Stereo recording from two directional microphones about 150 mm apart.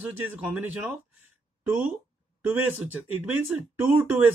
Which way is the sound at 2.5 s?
10° right (ahead or behind).